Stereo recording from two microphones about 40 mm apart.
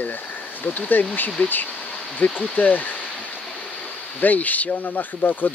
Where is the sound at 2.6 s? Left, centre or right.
Left.